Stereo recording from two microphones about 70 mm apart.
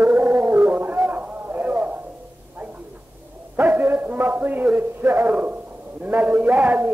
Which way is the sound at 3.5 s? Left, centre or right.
Right.